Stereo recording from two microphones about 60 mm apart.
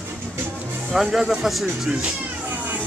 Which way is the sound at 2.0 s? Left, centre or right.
Right.